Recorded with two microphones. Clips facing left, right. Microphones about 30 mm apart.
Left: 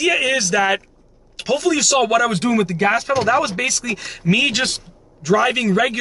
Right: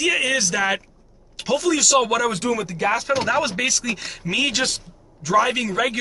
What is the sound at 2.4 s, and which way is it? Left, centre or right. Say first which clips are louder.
Speech: left 5 dB; left.